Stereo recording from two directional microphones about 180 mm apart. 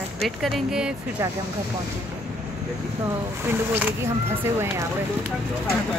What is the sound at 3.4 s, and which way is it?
Speech, 10° right (ahead or behind).